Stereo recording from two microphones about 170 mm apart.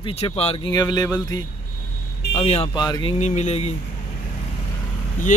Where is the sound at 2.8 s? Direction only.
25° left (ahead or behind).